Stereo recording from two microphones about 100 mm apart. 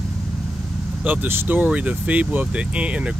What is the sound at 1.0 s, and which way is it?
Speech, 20° right (ahead or behind).